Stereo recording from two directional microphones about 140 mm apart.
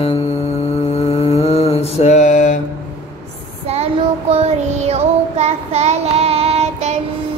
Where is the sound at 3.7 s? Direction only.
50° right (ahead or behind).